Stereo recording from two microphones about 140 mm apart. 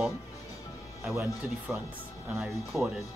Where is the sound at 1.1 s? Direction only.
10° right (ahead or behind).